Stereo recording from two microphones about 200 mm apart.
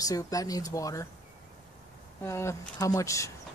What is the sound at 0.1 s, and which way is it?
Speech, 15° left (ahead or behind).